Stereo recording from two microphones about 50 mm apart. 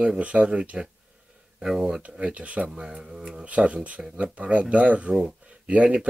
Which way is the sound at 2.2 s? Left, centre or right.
Right.